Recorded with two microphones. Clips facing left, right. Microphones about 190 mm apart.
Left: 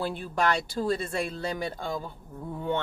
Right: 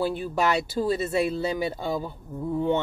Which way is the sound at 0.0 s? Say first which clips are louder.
Right 3 dB; 5° right (ahead or behind).